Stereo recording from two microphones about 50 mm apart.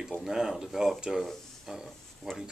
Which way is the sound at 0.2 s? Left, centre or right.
Centre.